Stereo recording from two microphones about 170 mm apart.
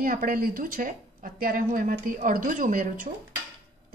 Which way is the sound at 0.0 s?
55° right (ahead or behind).